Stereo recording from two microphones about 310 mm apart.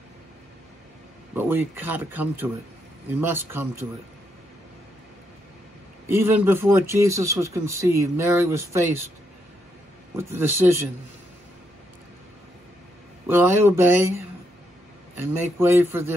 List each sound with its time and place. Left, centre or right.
1.3 s a man's voice: centre
6.0 s a man's voice: centre
10.1 s a man's voice: centre
13.3 s a man's voice: centre